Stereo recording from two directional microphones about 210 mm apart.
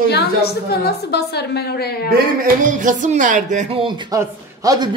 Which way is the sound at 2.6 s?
40° right (ahead or behind).